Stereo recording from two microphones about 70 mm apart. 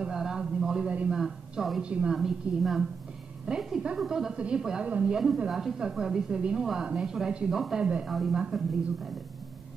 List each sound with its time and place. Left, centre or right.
0.0 s a sound: centre
1.2 s a woman's voice: centre
1.8 s a woman's voice: centre
2.1 s a woman's voice: centre